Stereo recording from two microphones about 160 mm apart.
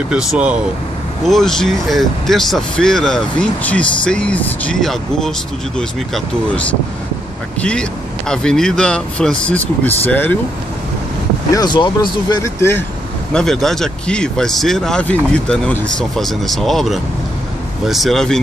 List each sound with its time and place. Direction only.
0.1 s speech: 5° right (ahead or behind)
8.3 s speech: 5° left (ahead or behind)
11.5 s speech: 25° left (ahead or behind)
13.3 s speech: 5° left (ahead or behind)